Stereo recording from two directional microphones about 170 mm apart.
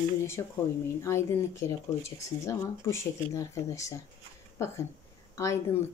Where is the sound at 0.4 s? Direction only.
20° left (ahead or behind).